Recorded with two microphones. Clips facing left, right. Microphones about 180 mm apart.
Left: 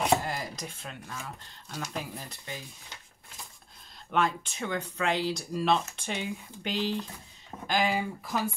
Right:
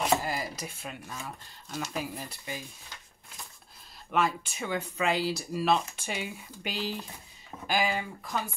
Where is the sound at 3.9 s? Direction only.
5° right (ahead or behind).